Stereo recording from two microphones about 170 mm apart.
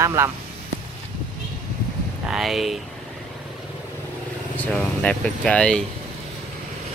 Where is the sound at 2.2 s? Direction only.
Centre (ahead or behind).